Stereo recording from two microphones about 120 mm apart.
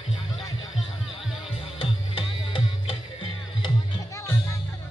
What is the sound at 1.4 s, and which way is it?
Music, 50° left (ahead or behind).